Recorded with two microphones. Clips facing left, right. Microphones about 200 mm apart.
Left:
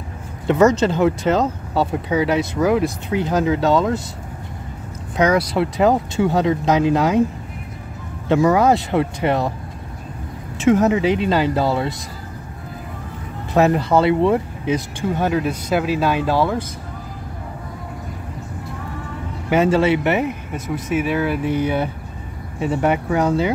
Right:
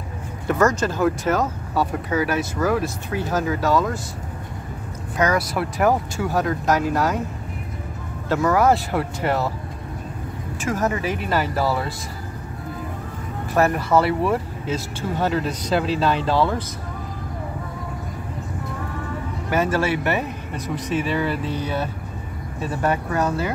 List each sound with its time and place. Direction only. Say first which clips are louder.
0.5 s speech: left 5 dB; 20° left (ahead or behind)
5.1 s speech: left 4 dB; 20° left (ahead or behind)
8.3 s speech: left 3 dB; 20° left (ahead or behind)
10.6 s speech: left 8 dB; 20° left (ahead or behind)
13.5 s speech: left 3 dB; 20° left (ahead or behind)
19.5 s speech: left 5 dB; 20° left (ahead or behind)
22.6 s speech: left 4 dB; 15° left (ahead or behind)